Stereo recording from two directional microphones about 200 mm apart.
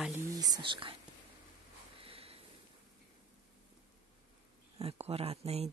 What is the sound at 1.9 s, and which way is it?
Sniff, 30° right (ahead or behind).